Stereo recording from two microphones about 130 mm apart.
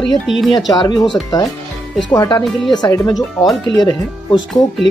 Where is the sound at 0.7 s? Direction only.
30° left (ahead or behind).